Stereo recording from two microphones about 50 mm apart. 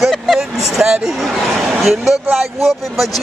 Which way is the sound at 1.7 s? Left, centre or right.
Centre.